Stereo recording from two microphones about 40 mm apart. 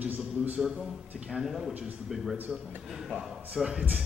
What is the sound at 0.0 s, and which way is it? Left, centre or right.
Speech, right.